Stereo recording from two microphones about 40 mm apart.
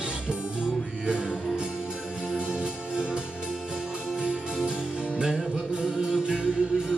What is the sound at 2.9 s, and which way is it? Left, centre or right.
Music, right.